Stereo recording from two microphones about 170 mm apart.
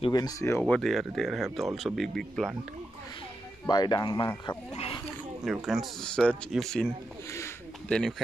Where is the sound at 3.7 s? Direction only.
25° left (ahead or behind).